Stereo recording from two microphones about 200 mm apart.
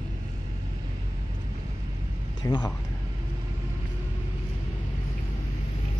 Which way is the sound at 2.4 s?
20° left (ahead or behind).